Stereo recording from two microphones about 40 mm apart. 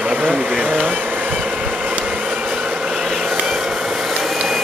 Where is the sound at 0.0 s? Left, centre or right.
Right.